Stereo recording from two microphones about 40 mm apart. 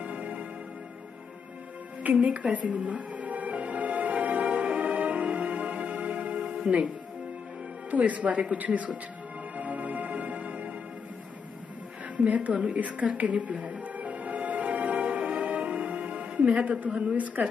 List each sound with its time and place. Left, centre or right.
0.0 s music: right
2.1 s music: right
7.9 s speech: right
9.6 s music: right
12.3 s music: right
16.6 s speech: right